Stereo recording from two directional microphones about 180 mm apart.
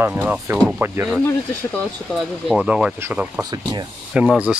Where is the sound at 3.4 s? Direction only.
20° right (ahead or behind).